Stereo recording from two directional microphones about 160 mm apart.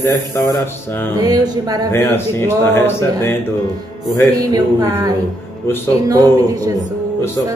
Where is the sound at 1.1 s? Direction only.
25° right (ahead or behind).